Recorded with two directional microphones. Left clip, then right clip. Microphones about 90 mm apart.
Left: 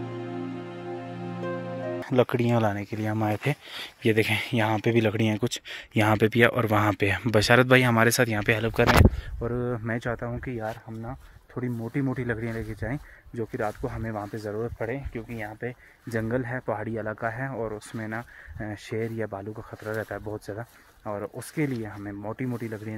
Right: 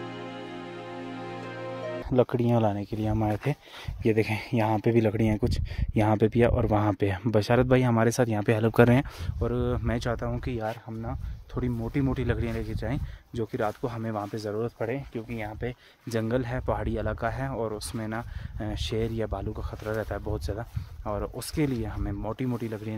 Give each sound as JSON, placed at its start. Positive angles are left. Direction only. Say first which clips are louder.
{"t": 0.0, "sound": "music", "louder": "left 3 dB", "side_deg": 0}
{"t": 2.1, "sound": "speech", "louder": "left 1 dB", "side_deg": -10}
{"t": 2.5, "sound": "speech", "louder": "left 1 dB", "side_deg": -35}
{"t": 3.2, "sound": "speech", "louder": "left 4 dB", "side_deg": 0}
{"t": 4.7, "sound": "speech", "louder": "right 1 dB", "side_deg": -35}
{"t": 5.0, "sound": "speech", "louder": "left 1 dB", "side_deg": -20}
{"t": 7.2, "sound": "speech", "louder": "left 4 dB", "side_deg": -5}
{"t": 9.4, "sound": "speech", "louder": "even", "side_deg": -20}
{"t": 10.3, "sound": "speech", "louder": "right 1 dB", "side_deg": -35}
{"t": 11.5, "sound": "speech", "louder": "right 1 dB", "side_deg": -20}
{"t": 14.8, "sound": "speech", "louder": "even", "side_deg": -40}
{"t": 16.1, "sound": "speech", "louder": "even", "side_deg": -15}
{"t": 21.1, "sound": "speech", "louder": "right 1 dB", "side_deg": -25}